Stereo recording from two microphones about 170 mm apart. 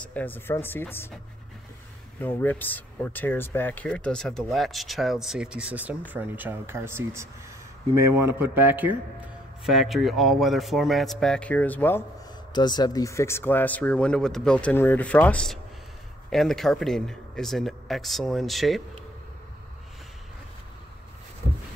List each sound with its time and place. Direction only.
0.0 s speech: 10° left (ahead or behind)
2.2 s speech: 10° left (ahead or behind); by 7.2 s 15° right (ahead or behind)
8.3 s a man's voice: 10° right (ahead or behind)
9.7 s speech: centre (ahead or behind)
12.5 s speech: 25° left (ahead or behind); by 18.8 s centre (ahead or behind)